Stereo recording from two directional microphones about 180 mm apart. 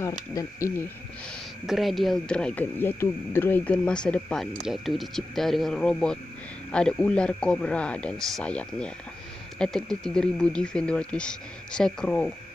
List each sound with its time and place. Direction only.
0.0 s speech: 15° left (ahead or behind)
1.7 s speech: centre (ahead or behind)